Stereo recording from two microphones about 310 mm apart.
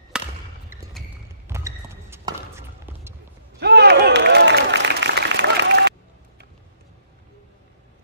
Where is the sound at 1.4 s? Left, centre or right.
Centre.